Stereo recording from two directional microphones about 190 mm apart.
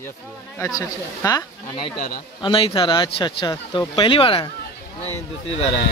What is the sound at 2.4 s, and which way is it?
Speech, 25° left (ahead or behind).